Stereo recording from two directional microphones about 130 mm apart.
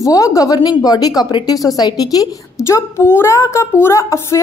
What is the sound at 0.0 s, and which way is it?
A woman's voice, 25° left (ahead or behind).